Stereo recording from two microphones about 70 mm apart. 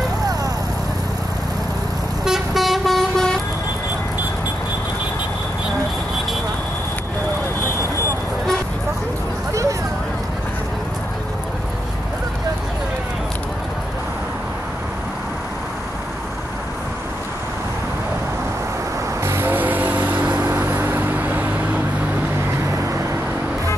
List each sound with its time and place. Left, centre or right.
2.2 s vehicle: centre
9.5 s vehicle: right
19.2 s vehicle: right